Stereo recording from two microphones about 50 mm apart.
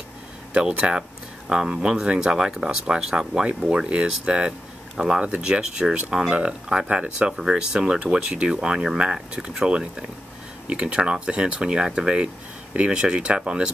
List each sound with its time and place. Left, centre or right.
0.5 s speech: right